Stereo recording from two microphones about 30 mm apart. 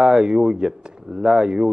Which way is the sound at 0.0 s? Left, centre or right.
Right.